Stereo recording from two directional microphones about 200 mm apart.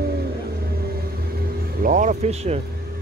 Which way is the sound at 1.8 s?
40° right (ahead or behind).